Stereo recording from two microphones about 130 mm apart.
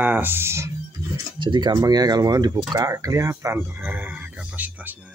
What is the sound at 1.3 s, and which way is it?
Speech, 35° right (ahead or behind).